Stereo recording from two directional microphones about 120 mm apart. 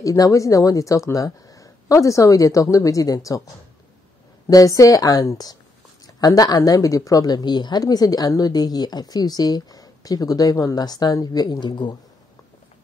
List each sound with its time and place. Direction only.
0.0 s speech: 25° left (ahead or behind)
4.5 s speech: 30° left (ahead or behind)